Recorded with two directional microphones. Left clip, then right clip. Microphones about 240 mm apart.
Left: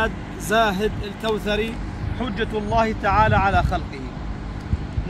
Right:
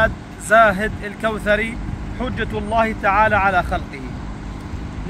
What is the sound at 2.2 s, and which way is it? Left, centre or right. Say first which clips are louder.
Speech: right 1 dB; centre.